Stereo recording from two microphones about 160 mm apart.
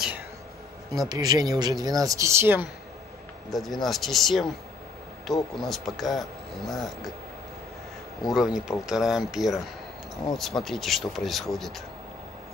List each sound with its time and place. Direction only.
0.9 s speech: 25° right (ahead or behind)
3.4 s speech: centre (ahead or behind)
8.2 s speech: centre (ahead or behind)